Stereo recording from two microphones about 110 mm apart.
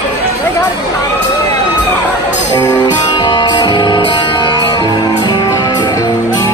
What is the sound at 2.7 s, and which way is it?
Music, 40° left (ahead or behind).